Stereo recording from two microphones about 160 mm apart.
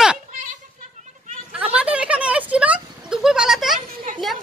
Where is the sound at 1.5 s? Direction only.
5° right (ahead or behind).